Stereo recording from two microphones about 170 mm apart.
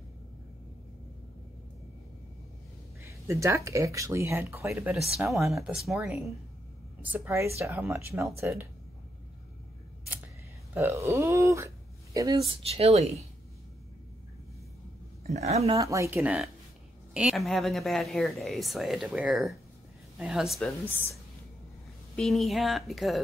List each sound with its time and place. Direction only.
3.0 s speech: 15° right (ahead or behind)
5.3 s speech: centre (ahead or behind)
7.1 s speech: 15° right (ahead or behind)
10.7 s a sound: 15° right (ahead or behind)
12.6 s speech: 35° right (ahead or behind)
15.2 s speech: 40° right (ahead or behind)
15.8 s speech: 20° right (ahead or behind); by 20.7 s centre (ahead or behind)
20.9 s speech: 10° left (ahead or behind)
22.1 s speech: centre (ahead or behind)